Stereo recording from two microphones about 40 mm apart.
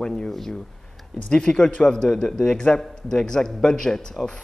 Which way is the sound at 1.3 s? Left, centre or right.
Left.